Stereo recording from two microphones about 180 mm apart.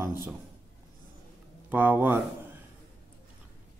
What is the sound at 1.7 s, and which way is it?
Speech, 10° right (ahead or behind).